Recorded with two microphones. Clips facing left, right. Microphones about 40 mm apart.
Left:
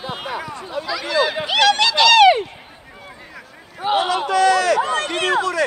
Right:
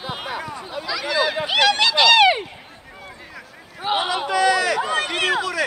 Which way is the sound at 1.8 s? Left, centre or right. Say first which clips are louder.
Left 2 dB; right.